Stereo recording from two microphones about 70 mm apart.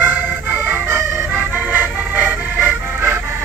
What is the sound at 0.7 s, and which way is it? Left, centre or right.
Organ, right.